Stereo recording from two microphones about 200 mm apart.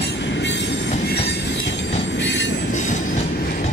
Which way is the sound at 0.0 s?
60° left (ahead or behind).